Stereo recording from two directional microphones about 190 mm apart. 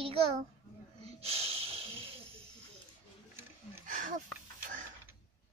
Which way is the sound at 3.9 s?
45° right (ahead or behind).